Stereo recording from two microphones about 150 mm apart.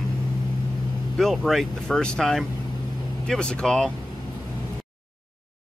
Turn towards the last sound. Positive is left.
turn(degrees=5)  # may be behind; listen again after turning